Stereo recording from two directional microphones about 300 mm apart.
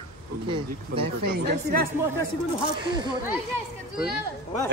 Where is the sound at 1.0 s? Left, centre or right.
Right.